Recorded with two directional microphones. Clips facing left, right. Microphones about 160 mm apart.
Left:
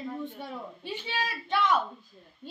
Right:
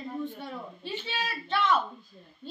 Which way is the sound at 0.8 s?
10° left (ahead or behind).